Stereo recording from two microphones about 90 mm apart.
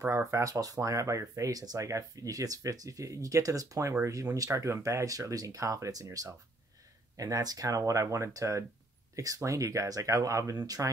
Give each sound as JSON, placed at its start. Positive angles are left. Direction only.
{"t": 0.1, "sound": "speech", "side_deg": -35}